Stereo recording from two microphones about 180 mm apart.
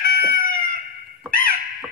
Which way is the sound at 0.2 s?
50° left (ahead or behind).